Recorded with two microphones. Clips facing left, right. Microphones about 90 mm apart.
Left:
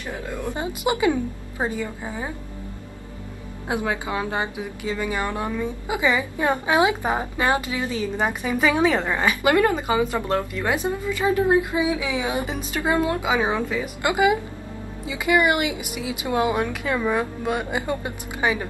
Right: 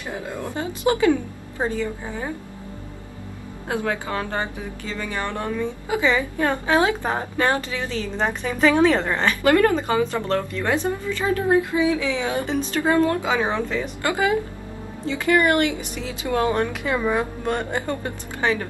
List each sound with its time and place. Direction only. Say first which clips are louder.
0.0 s a sound: right 1 dB; 20° right (ahead or behind)
0.5 s speech: right 2 dB; 15° left (ahead or behind)
3.6 s speech: even; 15° left (ahead or behind)
16.6 s speech: right 1 dB; centre (ahead or behind)